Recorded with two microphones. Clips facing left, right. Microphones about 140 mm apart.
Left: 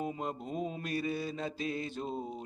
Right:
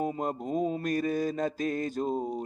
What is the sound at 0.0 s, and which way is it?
Speech, 45° right (ahead or behind).